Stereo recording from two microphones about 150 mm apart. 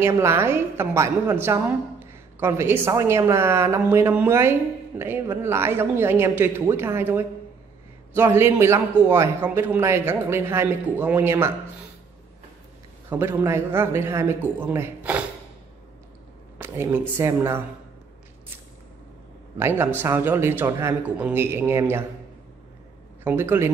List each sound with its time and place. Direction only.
0.0 s a woman's voice: 15° right (ahead or behind)
13.1 s a woman's voice: 15° right (ahead or behind)
16.5 s a woman's voice: 15° right (ahead or behind)
19.6 s a woman's voice: 15° right (ahead or behind)
23.2 s a woman's voice: 15° right (ahead or behind)